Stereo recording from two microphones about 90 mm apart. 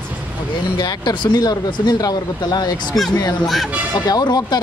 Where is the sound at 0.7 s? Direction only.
50° left (ahead or behind).